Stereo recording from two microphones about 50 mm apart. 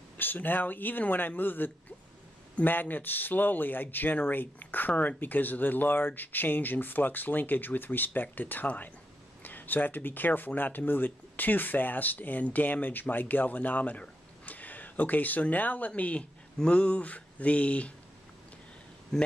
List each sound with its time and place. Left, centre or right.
0.2 s a man's voice: left
19.1 s speech: centre